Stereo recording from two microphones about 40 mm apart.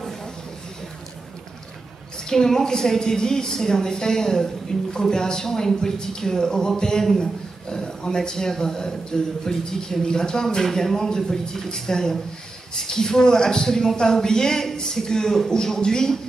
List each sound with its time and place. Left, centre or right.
2.2 s a man's voice: centre